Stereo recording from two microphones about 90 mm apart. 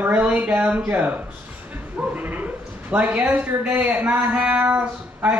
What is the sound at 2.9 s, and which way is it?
Speech, 15° right (ahead or behind).